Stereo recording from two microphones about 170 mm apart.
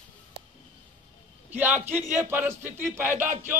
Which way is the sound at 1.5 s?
10° right (ahead or behind).